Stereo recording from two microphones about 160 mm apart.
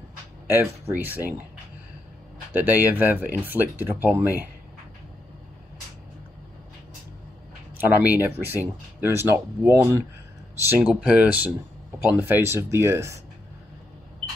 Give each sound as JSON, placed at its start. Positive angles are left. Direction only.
{"t": 0.5, "sound": "speech", "side_deg": -15}
{"t": 2.5, "sound": "speech", "side_deg": -10}
{"t": 7.7, "sound": "speech", "side_deg": -10}